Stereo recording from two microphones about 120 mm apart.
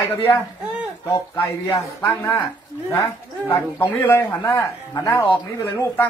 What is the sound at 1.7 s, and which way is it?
Speech, 20° left (ahead or behind).